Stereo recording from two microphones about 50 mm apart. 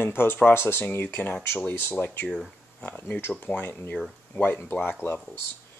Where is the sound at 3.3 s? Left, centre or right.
Left.